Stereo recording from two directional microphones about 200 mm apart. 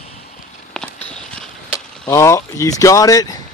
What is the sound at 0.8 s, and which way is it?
Walk, 5° left (ahead or behind).